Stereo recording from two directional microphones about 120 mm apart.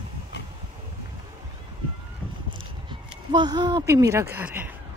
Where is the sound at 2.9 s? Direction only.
40° right (ahead or behind).